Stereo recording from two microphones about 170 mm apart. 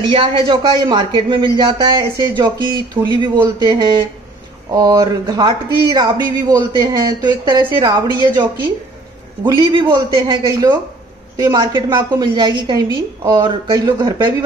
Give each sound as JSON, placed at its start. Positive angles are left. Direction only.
{"t": 0.1, "sound": "speech", "side_deg": -30}
{"t": 9.7, "sound": "speech", "side_deg": -30}